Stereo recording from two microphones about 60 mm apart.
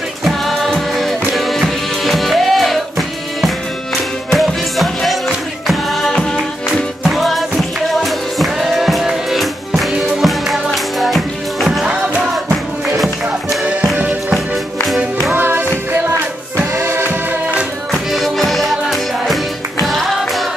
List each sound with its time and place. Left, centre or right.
0.2 s music: centre
11.8 s music: centre
15.3 s music: right
17.9 s music: centre